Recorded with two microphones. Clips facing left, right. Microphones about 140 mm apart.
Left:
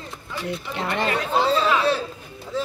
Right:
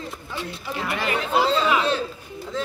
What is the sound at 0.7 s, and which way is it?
Speech, 25° left (ahead or behind).